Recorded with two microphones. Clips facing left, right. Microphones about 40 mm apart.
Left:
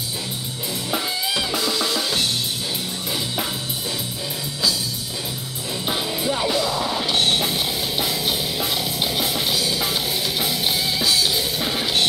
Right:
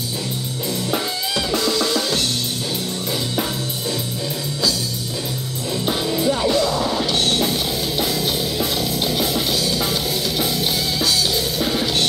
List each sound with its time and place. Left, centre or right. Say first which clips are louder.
1.3 s drum kit: right 4 dB; centre
5.9 s music: right 4 dB; centre
7.1 s music: right 1 dB; centre